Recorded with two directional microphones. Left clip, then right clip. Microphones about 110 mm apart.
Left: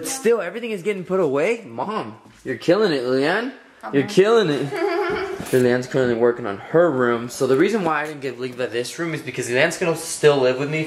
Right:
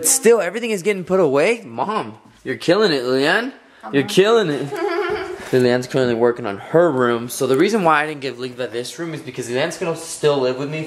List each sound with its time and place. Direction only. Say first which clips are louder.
0.0 s speech: right 5 dB; 40° right (ahead or behind)
1.0 s speech: right 4 dB; 25° right (ahead or behind); by 5.0 s 5° right (ahead or behind)
5.5 s speech: right 2 dB; 15° right (ahead or behind)
7.3 s speech: even; 15° right (ahead or behind)
7.8 s speech: right 6 dB; 50° right (ahead or behind)
8.5 s speech: left 1 dB; centre (ahead or behind)